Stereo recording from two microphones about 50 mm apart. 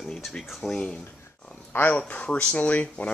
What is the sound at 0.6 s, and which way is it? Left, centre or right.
Speech, centre.